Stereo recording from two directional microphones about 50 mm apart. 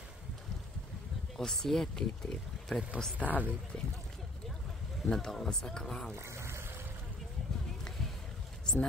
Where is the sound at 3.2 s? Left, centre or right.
Left.